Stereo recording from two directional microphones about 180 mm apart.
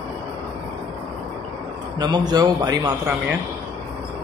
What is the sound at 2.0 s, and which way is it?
Speech, 20° right (ahead or behind).